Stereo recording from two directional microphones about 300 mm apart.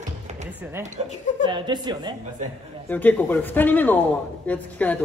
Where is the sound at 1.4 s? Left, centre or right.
Centre.